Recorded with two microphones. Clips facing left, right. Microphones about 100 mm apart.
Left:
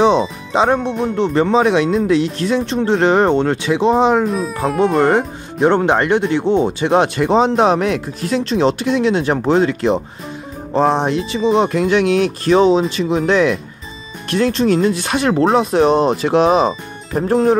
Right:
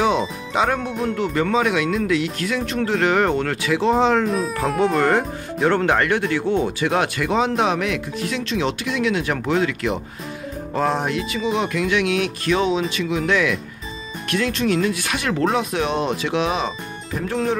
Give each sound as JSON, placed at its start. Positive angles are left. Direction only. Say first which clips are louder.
{"t": 0.0, "sound": "speech", "louder": "left 6 dB", "side_deg": 25}
{"t": 4.3, "sound": "speech", "louder": "left 3 dB", "side_deg": 0}
{"t": 5.0, "sound": "speech", "louder": "left 4 dB", "side_deg": 20}
{"t": 11.0, "sound": "speech", "louder": "left 6 dB", "side_deg": 30}